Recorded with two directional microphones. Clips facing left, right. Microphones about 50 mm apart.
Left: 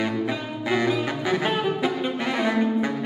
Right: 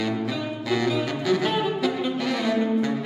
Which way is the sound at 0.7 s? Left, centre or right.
Left.